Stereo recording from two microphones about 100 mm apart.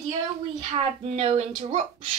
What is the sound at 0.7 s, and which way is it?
Speech, 90° right.